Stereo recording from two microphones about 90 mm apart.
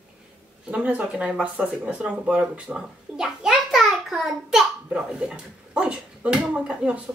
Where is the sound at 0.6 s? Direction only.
15° right (ahead or behind).